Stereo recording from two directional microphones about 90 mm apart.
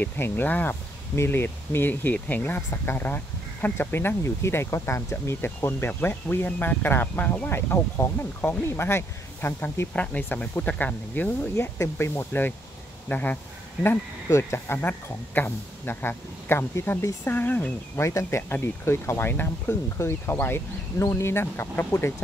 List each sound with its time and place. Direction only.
0.0 s speech: 20° left (ahead or behind)
13.8 s speech: 30° left (ahead or behind)
18.0 s speech: 30° left (ahead or behind)